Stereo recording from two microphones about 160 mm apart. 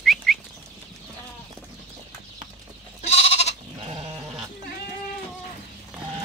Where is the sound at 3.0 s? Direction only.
40° left (ahead or behind).